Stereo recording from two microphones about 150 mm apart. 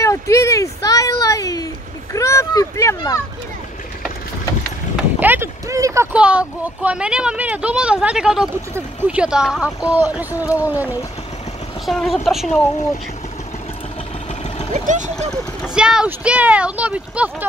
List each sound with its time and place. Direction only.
0.0 s a sound: 20° left (ahead or behind)
4.9 s vehicle: 10° right (ahead or behind)
6.1 s speech: 5° right (ahead or behind)
10.4 s speech: 20° left (ahead or behind)
10.7 s speech: 10° right (ahead or behind)
11.8 s a woman's voice: centre (ahead or behind)
14.7 s speech: 55° right (ahead or behind)
15.7 s speech: 5° right (ahead or behind)